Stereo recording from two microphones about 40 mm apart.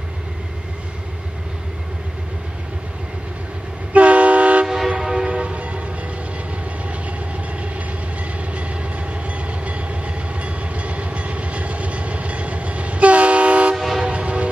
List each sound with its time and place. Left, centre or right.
3.9 s train: right
4.6 s train: centre
5.4 s train: right
9.5 s train: right
13.7 s train: centre
14.0 s train: right